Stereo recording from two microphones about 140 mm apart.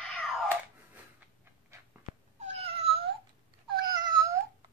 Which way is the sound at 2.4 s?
45° right (ahead or behind).